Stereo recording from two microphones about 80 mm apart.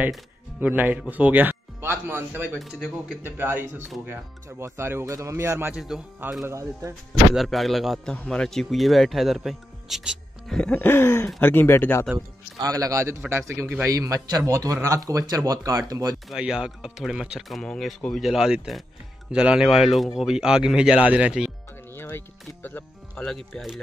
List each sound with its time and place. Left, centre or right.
0.6 s speech: right
2.6 s speech: centre
3.3 s speech: right
5.8 s speech: centre
6.4 s speech: right
7.3 s speech: centre
8.0 s speech: centre
10.6 s speech: centre
12.6 s speech: right
13.9 s speech: right
16.3 s speech: centre
18.3 s speech: centre
21.9 s music: left